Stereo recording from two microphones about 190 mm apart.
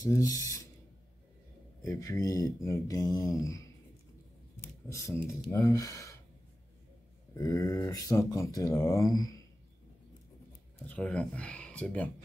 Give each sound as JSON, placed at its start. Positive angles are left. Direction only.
{"t": 0.0, "sound": "speech", "side_deg": 20}
{"t": 1.8, "sound": "speech", "side_deg": 15}
{"t": 4.9, "sound": "speech", "side_deg": 15}
{"t": 7.3, "sound": "speech", "side_deg": 15}
{"t": 10.9, "sound": "speech", "side_deg": 5}